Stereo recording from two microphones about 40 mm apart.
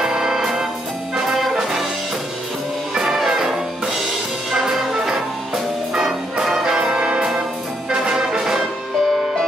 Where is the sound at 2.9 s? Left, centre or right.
Centre.